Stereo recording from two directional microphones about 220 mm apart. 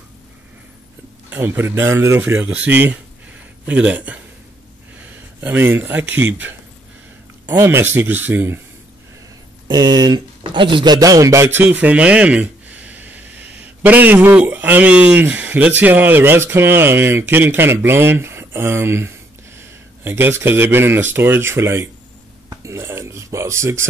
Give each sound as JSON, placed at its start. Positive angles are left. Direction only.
{"t": 1.3, "sound": "speech", "side_deg": -10}
{"t": 9.7, "sound": "speech", "side_deg": -15}
{"t": 22.5, "sound": "a sound", "side_deg": -15}